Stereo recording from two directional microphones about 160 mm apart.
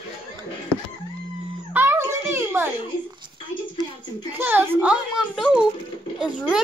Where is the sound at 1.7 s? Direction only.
15° right (ahead or behind).